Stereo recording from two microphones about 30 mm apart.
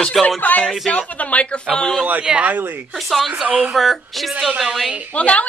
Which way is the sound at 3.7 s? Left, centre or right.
Centre.